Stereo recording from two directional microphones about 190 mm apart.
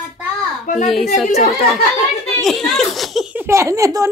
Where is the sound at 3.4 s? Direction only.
15° right (ahead or behind).